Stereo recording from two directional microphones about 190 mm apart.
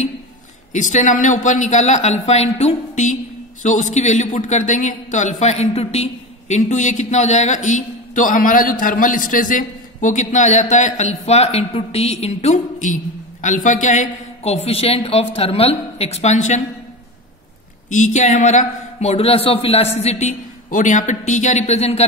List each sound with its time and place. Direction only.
0.7 s a man's voice: 40° left (ahead or behind)
17.8 s a man's voice: 40° left (ahead or behind)